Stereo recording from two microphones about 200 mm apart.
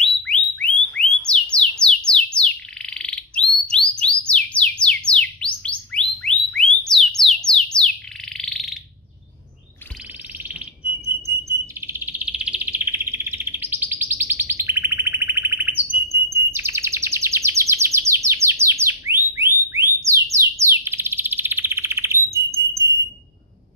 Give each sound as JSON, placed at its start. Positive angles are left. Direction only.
{"t": 0.0, "sound": "a sound", "side_deg": 5}
{"t": 1.2, "sound": "bird", "side_deg": 5}
{"t": 11.8, "sound": "bird", "side_deg": -10}
{"t": 16.1, "sound": "chirp", "side_deg": -10}